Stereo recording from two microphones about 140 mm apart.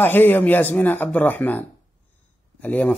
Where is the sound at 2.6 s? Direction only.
10° left (ahead or behind).